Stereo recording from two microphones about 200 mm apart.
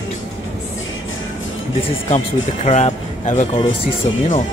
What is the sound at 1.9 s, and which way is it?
Speech, 35° left (ahead or behind).